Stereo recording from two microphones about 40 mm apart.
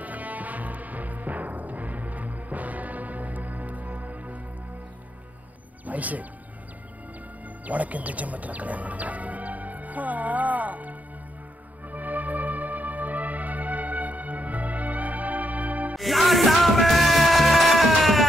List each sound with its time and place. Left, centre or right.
0.0 s music: right
5.9 s speech: right
7.6 s music: right
16.0 s music: centre